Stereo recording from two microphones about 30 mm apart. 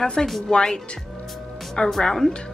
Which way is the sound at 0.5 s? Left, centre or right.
Left.